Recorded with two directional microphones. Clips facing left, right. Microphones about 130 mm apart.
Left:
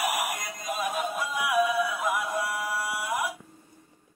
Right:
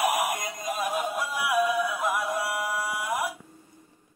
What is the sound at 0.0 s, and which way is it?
Music, 20° right (ahead or behind).